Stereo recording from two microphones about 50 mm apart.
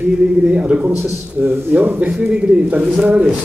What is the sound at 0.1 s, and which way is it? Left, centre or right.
A man's voice, right.